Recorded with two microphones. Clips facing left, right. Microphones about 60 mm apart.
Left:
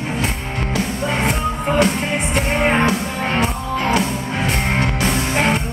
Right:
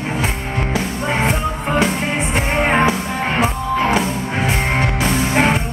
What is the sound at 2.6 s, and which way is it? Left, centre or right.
Music, centre.